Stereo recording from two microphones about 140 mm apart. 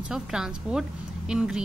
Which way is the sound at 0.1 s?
5° right (ahead or behind).